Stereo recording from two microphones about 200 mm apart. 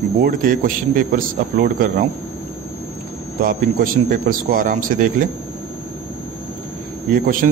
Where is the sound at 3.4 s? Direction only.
45° right (ahead or behind).